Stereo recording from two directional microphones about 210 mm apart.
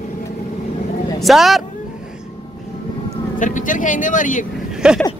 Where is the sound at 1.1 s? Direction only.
Centre (ahead or behind).